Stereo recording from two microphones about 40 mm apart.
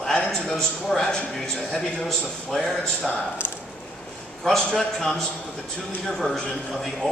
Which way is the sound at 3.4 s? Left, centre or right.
Left.